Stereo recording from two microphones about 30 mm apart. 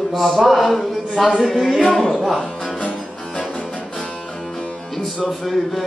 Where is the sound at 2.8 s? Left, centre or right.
Left.